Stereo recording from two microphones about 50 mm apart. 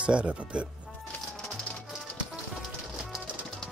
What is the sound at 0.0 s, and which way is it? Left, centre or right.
Speech, right.